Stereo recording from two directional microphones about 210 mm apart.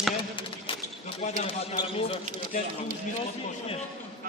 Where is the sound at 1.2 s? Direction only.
25° left (ahead or behind).